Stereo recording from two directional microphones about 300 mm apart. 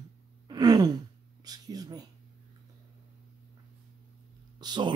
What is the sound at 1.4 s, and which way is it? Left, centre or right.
Speech, centre.